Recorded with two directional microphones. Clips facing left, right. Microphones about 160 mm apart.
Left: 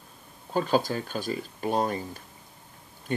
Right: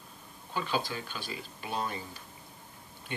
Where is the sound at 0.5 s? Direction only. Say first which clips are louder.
Left 8 dB; 45° left (ahead or behind).